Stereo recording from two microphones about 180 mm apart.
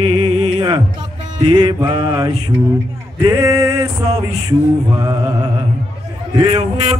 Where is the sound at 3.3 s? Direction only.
15° right (ahead or behind).